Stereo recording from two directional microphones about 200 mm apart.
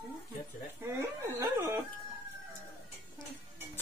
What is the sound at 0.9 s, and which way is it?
Speech, 15° right (ahead or behind).